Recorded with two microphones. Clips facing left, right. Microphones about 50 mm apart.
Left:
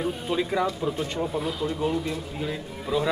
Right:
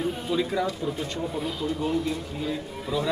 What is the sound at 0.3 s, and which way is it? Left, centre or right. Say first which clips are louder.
Speech: even; centre.